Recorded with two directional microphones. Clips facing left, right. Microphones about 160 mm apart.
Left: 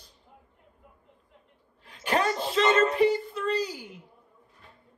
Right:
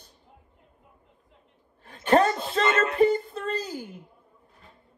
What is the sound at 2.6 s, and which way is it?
A man's voice, 45° right (ahead or behind).